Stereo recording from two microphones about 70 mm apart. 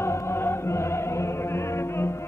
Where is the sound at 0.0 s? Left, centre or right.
Left.